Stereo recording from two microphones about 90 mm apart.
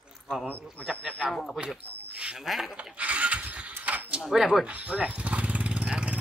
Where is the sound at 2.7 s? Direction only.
15° right (ahead or behind).